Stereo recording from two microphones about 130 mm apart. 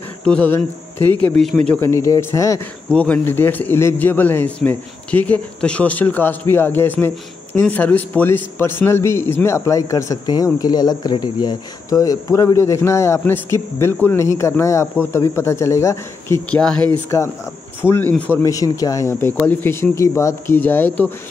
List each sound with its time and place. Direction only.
0.2 s speech: 5° left (ahead or behind)
0.5 s a man's voice: 20° left (ahead or behind)
1.8 s a man's voice: 20° left (ahead or behind)
2.9 s a man's voice: 10° left (ahead or behind)
16.4 s a man's voice: 10° left (ahead or behind)
18.1 s a man's voice: 10° left (ahead or behind)
18.4 s a man's voice: 25° left (ahead or behind)